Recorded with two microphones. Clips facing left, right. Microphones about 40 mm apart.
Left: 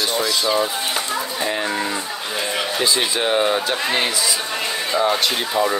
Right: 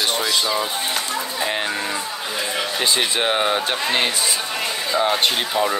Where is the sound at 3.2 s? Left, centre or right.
Right.